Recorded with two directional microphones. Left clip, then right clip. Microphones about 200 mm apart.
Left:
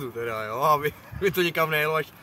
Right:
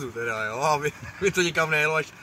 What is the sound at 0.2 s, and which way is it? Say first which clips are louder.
Speech: even; 5° left (ahead or behind).